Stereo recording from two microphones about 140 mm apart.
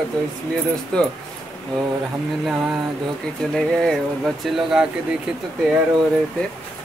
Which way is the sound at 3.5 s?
Centre (ahead or behind).